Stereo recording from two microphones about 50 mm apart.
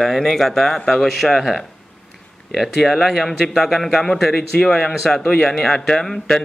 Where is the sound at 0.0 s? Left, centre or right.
Centre.